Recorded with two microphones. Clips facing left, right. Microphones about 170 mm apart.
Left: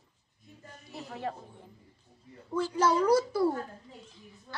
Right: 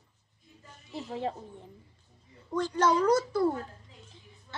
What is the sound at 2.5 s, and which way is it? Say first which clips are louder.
A child's voice: right 1 dB; 5° left (ahead or behind).